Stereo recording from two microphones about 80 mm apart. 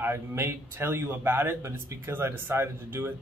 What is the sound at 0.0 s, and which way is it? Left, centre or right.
A man's voice, right.